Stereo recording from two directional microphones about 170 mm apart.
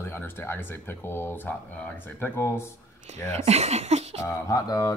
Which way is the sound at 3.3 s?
40° right (ahead or behind).